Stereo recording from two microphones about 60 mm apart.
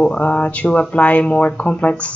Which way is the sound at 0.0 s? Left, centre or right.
Centre.